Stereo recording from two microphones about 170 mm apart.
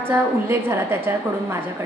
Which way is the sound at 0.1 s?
15° right (ahead or behind).